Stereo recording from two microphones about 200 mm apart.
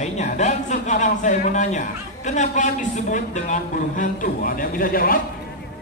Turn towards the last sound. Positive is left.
turn(degrees=45)  # may be behind; listen again after turning